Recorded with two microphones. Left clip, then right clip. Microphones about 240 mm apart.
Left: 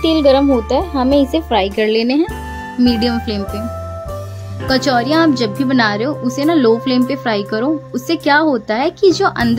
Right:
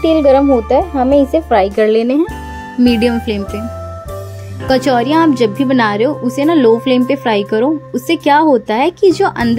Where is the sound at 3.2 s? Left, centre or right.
Centre.